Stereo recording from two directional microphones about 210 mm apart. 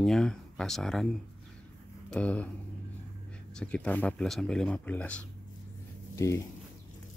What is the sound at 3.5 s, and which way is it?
Speech, 5° left (ahead or behind).